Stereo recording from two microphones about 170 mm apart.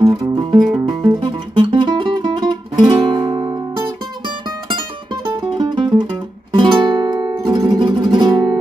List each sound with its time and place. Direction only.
0.0 s music: 25° right (ahead or behind)
5.2 s music: 30° right (ahead or behind)